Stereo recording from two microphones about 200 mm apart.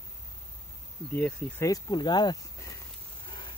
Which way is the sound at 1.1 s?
5° left (ahead or behind).